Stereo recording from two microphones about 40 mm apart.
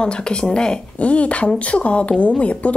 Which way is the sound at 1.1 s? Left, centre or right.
Left.